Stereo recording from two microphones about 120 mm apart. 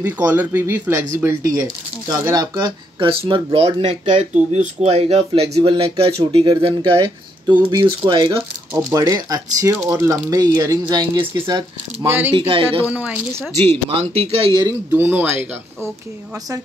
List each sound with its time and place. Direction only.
0.0 s speech: 15° right (ahead or behind); by 8.5 s 40° right (ahead or behind)
8.9 s speech: 30° right (ahead or behind)
12.4 s speech: 45° right (ahead or behind)
12.8 s speech: 10° right (ahead or behind)
13.8 s speech: 50° right (ahead or behind)
14.7 s speech: 20° right (ahead or behind)